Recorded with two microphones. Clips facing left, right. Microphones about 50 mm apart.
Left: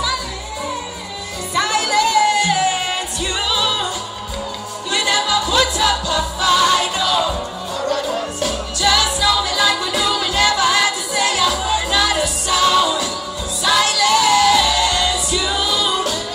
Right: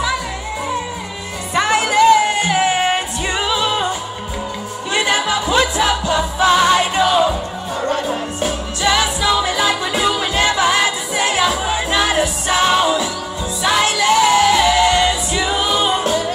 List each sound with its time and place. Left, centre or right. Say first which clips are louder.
1.5 s music: right 2 dB; right
4.9 s music: right 1 dB; right